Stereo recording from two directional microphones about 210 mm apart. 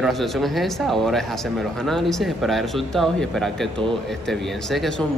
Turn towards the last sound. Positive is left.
turn(degrees=0)  # may be behind; listen again after turning